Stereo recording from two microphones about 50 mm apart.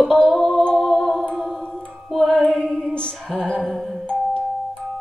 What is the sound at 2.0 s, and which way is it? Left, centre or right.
Music, centre.